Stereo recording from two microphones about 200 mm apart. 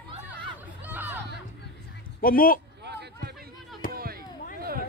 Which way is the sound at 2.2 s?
45° left (ahead or behind).